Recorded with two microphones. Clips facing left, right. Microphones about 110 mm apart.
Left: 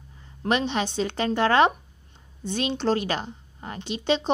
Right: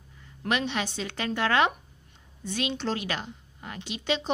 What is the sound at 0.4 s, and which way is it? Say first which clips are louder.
A woman's voice: left 4 dB; 30° left (ahead or behind).